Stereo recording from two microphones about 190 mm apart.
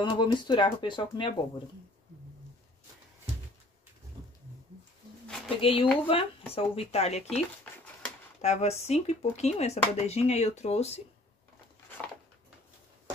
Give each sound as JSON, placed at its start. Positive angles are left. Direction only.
{"t": 0.0, "sound": "speech", "side_deg": 25}
{"t": 5.6, "sound": "speech", "side_deg": 30}